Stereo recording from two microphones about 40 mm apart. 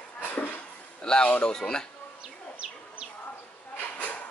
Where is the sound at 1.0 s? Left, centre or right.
Centre.